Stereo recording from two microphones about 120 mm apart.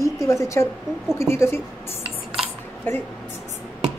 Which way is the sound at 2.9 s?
15° left (ahead or behind).